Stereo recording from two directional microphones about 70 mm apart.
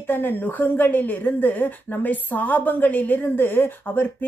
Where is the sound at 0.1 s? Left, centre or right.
Left.